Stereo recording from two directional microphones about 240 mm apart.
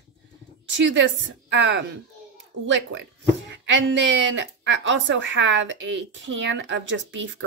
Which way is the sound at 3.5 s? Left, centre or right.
Right.